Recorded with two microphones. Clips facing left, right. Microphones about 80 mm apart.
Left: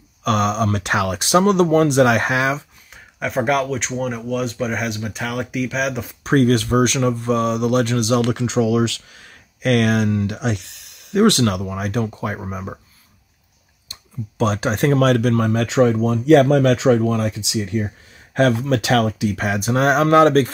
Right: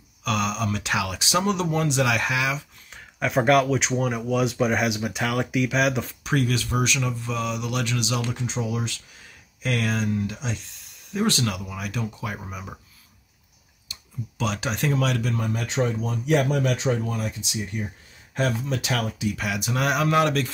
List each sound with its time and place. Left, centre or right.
0.2 s speech: left
2.9 s speech: centre
6.2 s speech: left
12.4 s speech: left
13.9 s a sound: left
14.4 s speech: left
15.3 s speech: left
19.3 s speech: left